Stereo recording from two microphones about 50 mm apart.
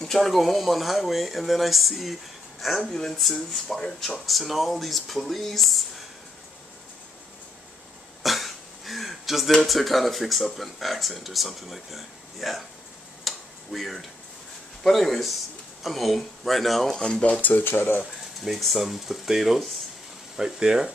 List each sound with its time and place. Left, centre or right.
0.0 s speech: centre
3.2 s speech: centre
8.2 s a sound: centre
9.7 s speech: centre
13.2 s tick-tock: centre
14.8 s speech: centre
17.4 s speech: left
17.6 s speech: left
18.4 s speech: centre